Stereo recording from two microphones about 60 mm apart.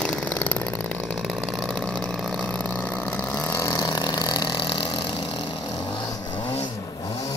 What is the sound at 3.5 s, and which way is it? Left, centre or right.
Vehicle, left.